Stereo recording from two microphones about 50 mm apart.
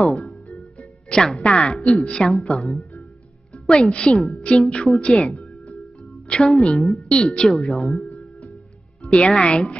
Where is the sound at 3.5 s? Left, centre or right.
Centre.